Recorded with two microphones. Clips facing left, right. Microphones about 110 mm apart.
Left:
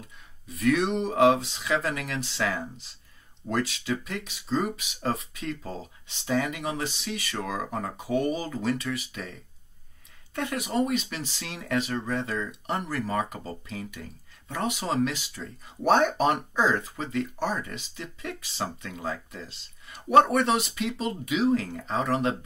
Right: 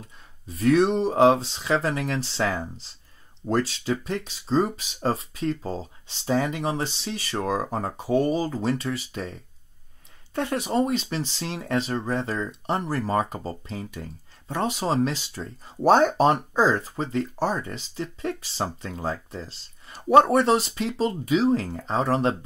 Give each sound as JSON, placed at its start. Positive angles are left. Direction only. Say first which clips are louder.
{"t": 0.5, "sound": "speech", "louder": "right 5 dB", "side_deg": -30}